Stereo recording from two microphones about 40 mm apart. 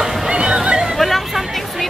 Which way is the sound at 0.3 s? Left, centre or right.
Centre.